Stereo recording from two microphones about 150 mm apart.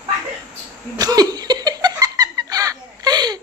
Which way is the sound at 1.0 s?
25° right (ahead or behind).